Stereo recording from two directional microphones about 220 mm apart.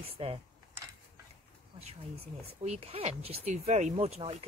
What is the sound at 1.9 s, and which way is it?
Speech, 30° right (ahead or behind).